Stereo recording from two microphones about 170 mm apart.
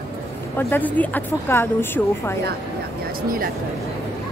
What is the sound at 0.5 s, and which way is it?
A woman's voice, 10° left (ahead or behind).